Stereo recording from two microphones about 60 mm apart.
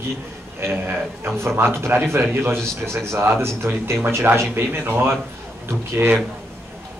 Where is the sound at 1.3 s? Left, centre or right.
Right.